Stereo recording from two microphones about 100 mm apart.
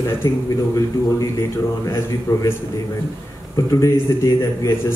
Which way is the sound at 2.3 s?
25° left (ahead or behind).